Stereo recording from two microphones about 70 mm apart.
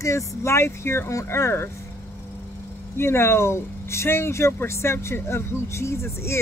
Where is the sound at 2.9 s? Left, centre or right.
Left.